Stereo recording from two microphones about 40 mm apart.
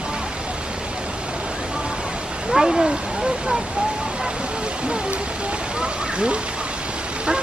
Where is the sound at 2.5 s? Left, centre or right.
Centre.